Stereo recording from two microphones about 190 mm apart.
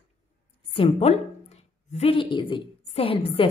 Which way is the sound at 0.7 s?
30° left (ahead or behind).